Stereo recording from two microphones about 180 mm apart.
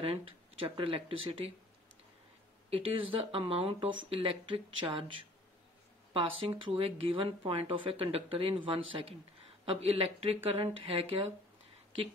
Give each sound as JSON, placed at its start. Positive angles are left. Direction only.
{"t": 0.0, "sound": "speech", "side_deg": -30}
{"t": 2.7, "sound": "speech", "side_deg": -30}
{"t": 6.6, "sound": "speech", "side_deg": -30}